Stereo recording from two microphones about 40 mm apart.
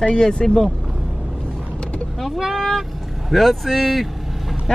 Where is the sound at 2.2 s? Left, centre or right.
Centre.